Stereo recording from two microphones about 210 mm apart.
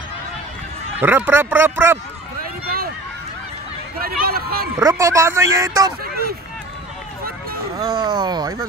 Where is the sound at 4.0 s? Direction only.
45° right (ahead or behind).